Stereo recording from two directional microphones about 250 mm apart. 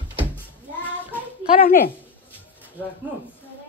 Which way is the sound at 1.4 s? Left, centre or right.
Left.